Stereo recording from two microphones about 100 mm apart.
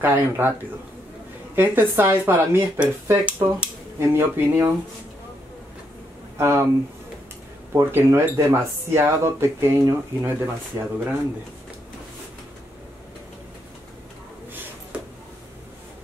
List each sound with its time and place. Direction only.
0.0 s speech: 20° right (ahead or behind)
6.3 s speech: 25° right (ahead or behind)
7.7 s speech: 25° right (ahead or behind)
14.5 s a sound: 20° right (ahead or behind)